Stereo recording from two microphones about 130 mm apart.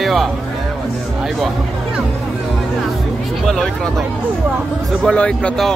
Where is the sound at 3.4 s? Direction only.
5° left (ahead or behind).